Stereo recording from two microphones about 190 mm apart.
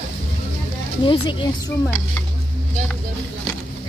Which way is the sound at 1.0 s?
25° left (ahead or behind).